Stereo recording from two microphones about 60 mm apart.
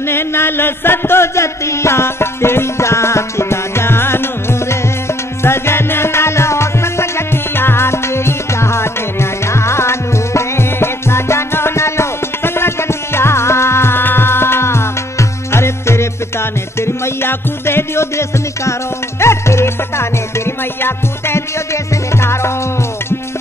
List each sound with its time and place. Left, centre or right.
0.0 s music: left